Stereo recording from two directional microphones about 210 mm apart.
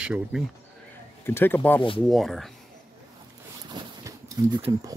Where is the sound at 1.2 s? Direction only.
10° left (ahead or behind).